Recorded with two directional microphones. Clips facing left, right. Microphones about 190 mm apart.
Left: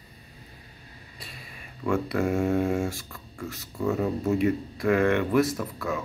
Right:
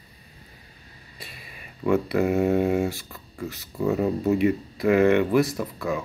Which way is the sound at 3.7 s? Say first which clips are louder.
Right 3 dB; 15° right (ahead or behind).